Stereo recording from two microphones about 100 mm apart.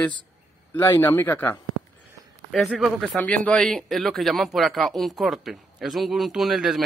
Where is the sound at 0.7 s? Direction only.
20° left (ahead or behind).